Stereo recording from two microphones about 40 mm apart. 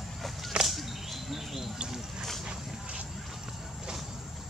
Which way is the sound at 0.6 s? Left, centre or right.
Centre.